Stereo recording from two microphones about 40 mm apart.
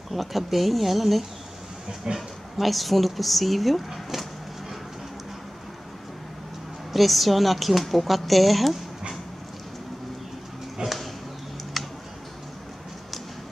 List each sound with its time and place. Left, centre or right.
0.1 s speech: centre
6.9 s speech: centre
10.8 s a sound: centre